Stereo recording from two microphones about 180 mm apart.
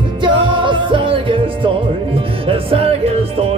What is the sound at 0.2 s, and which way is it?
Music, 25° right (ahead or behind).